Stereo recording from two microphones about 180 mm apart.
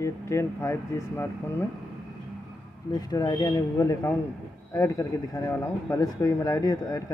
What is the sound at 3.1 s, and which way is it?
Speech, 20° left (ahead or behind).